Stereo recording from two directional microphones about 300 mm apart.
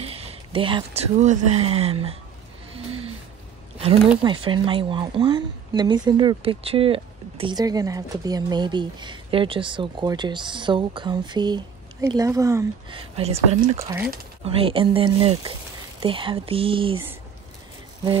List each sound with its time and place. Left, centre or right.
0.0 s speech: centre
2.7 s a sound: centre
4.2 s speech: centre